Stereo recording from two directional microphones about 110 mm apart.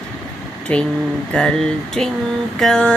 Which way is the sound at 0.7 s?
10° left (ahead or behind).